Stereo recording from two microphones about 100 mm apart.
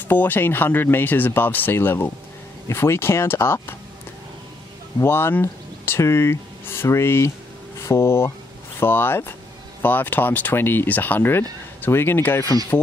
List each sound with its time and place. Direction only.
0.1 s speech: 20° left (ahead or behind)
5.0 s speech: 25° left (ahead or behind)